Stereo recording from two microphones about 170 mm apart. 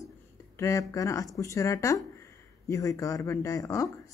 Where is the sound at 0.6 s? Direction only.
20° left (ahead or behind).